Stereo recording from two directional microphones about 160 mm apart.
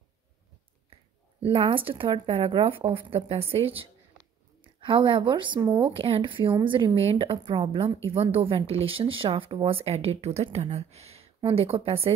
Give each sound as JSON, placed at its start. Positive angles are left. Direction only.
{"t": 1.4, "sound": "a woman's voice", "side_deg": -35}